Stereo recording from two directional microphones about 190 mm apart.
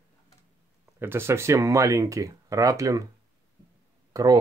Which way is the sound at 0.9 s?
10° right (ahead or behind).